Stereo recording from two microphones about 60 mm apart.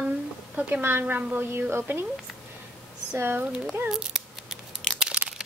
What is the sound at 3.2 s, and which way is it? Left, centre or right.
Speech, right.